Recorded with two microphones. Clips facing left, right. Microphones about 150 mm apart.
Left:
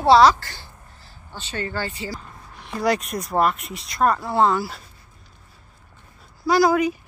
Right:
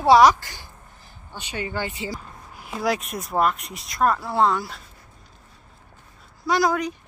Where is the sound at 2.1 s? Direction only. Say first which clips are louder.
Even; 5° right (ahead or behind).